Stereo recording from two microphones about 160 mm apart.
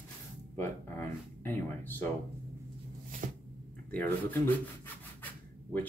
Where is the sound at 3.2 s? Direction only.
55° right (ahead or behind).